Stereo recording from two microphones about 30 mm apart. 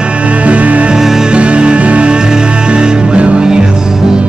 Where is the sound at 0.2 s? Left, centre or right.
Right.